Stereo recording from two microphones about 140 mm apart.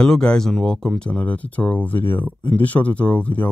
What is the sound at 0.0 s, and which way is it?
Speech, 5° left (ahead or behind).